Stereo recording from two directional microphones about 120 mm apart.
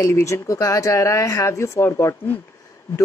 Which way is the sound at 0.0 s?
25° left (ahead or behind).